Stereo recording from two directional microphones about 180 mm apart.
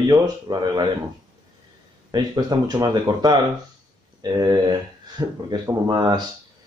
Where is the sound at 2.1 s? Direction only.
20° right (ahead or behind).